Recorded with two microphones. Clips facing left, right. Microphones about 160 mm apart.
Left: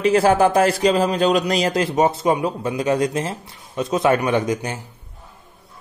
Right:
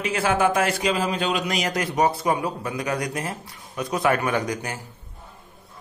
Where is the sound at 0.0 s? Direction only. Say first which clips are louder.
Left 7 dB; 35° left (ahead or behind); by 4.7 s 20° left (ahead or behind).